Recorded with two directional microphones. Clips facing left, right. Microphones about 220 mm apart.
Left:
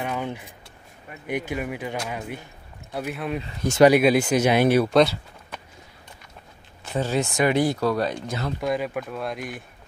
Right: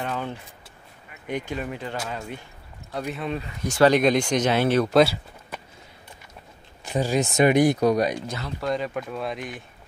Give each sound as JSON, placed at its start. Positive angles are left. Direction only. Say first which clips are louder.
{"t": 0.0, "sound": "a sound", "louder": "left 1 dB", "side_deg": 10}
{"t": 1.2, "sound": "speech", "louder": "left 1 dB", "side_deg": 10}
{"t": 3.4, "sound": "speech", "louder": "left 4 dB", "side_deg": 25}
{"t": 3.8, "sound": "speech", "louder": "left 2 dB", "side_deg": 10}
{"t": 4.8, "sound": "speech", "louder": "even", "side_deg": 0}
{"t": 6.8, "sound": "speech", "louder": "right 1 dB", "side_deg": -15}
{"t": 8.3, "sound": "speech", "louder": "left 2 dB", "side_deg": 10}